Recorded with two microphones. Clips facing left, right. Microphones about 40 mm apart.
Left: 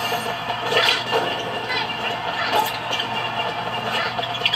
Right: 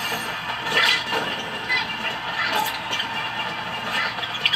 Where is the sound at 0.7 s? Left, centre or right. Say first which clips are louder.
Left 1 dB; centre.